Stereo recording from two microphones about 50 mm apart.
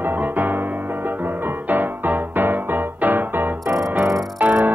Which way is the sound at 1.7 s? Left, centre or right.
Right.